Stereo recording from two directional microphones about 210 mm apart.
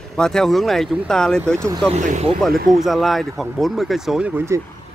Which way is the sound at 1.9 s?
35° right (ahead or behind).